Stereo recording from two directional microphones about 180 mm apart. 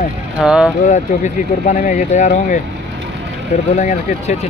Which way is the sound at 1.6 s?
40° left (ahead or behind).